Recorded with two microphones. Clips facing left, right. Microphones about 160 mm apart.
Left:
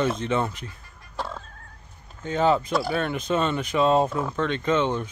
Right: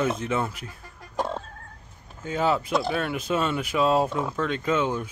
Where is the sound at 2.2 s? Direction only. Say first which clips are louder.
Left 3 dB; 5° right (ahead or behind).